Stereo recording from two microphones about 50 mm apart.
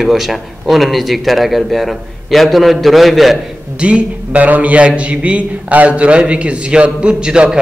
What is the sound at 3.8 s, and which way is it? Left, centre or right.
A man's voice, right.